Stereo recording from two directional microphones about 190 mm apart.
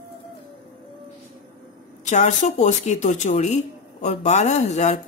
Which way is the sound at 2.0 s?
40° left (ahead or behind).